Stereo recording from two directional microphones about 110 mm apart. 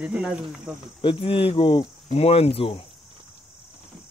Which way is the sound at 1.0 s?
50° left (ahead or behind).